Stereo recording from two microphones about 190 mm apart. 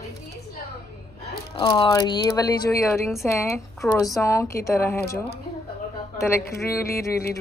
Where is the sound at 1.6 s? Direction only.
25° left (ahead or behind).